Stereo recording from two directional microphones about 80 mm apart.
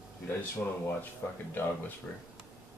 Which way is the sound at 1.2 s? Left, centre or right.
Left.